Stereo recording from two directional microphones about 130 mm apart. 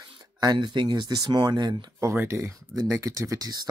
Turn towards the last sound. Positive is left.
turn(degrees=-30)  # may be behind; listen again after turning